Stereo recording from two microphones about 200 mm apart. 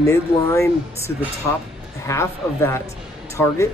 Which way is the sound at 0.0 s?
15° left (ahead or behind).